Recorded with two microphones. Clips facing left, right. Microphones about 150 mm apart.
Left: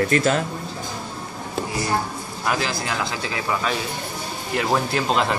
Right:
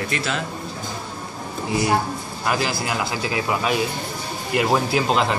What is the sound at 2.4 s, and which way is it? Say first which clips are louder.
A man's voice: right 1 dB; 5° right (ahead or behind).